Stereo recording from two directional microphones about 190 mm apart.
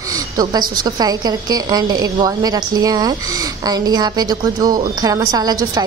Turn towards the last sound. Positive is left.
turn(degrees=-20)  # may be behind; listen again after turning